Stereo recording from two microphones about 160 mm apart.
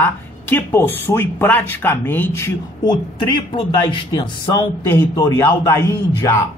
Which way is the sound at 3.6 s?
30° left (ahead or behind).